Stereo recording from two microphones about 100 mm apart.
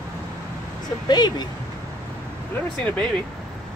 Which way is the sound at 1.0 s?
45° left (ahead or behind).